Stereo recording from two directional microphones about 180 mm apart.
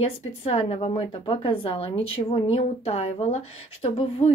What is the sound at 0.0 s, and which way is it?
A woman's voice, 35° left (ahead or behind).